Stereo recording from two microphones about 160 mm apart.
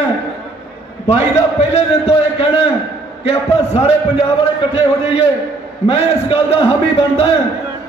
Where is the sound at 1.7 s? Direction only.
40° left (ahead or behind).